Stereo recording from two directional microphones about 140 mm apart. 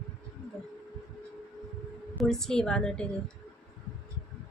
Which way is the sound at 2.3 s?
5° left (ahead or behind).